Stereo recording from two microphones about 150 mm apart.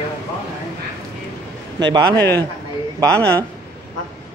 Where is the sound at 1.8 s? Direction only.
30° right (ahead or behind).